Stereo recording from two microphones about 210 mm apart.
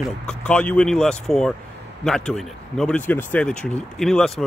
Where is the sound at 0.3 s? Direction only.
5° left (ahead or behind).